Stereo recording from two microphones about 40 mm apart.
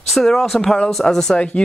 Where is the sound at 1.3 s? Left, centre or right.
Left.